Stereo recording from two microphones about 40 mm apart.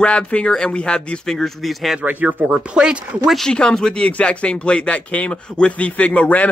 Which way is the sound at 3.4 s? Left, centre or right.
Centre.